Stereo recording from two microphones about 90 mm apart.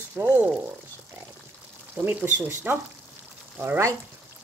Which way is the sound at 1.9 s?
20° right (ahead or behind).